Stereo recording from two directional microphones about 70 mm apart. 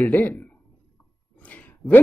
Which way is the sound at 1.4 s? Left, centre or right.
Left.